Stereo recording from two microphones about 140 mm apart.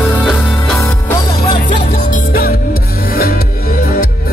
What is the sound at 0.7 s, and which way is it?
Music, 25° left (ahead or behind).